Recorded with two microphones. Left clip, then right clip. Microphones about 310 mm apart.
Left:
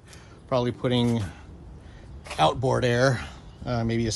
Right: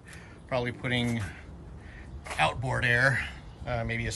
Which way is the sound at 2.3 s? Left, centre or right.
Centre.